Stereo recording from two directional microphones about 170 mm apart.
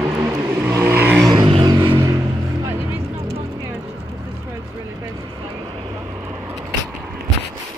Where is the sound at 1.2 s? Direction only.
25° right (ahead or behind).